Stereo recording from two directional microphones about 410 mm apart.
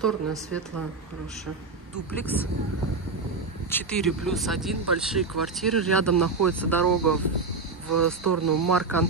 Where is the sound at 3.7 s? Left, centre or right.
Centre.